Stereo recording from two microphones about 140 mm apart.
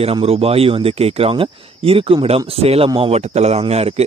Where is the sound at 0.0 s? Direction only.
45° right (ahead or behind).